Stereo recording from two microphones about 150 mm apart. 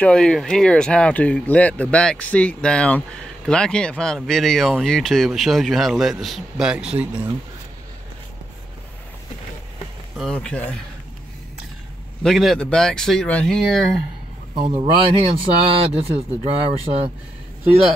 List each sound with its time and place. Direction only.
0.0 s speech: 5° left (ahead or behind)
10.1 s speech: 5° left (ahead or behind)
12.2 s speech: centre (ahead or behind)
14.5 s speech: 35° right (ahead or behind)